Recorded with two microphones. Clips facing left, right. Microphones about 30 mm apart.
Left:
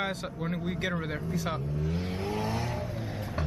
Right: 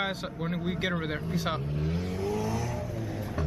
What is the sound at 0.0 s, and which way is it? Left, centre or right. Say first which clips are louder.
Speech: right 1 dB; centre.